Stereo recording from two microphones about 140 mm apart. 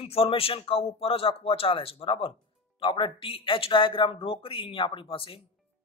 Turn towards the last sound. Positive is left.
turn(degrees=40)  # may be behind; listen again after turning